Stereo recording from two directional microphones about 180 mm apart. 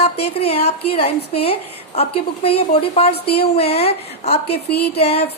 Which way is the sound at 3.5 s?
35° left (ahead or behind).